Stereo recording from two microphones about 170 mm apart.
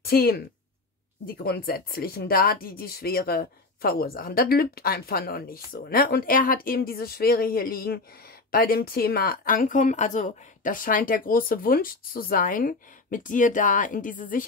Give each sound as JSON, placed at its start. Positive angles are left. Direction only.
{"t": 0.0, "sound": "a woman's voice", "side_deg": 60}